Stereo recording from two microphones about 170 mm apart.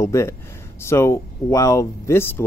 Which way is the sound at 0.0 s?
15° left (ahead or behind).